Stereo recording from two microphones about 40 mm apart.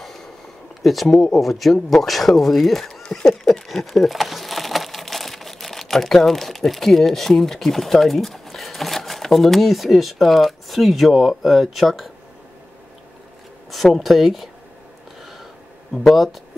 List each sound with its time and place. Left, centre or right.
0.0 s a sound: centre
0.8 s speech: centre
3.1 s a sound: left
3.6 s speech: centre
13.7 s speech: centre
15.9 s speech: centre